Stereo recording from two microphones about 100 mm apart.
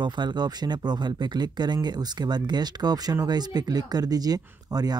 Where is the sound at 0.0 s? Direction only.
50° right (ahead or behind).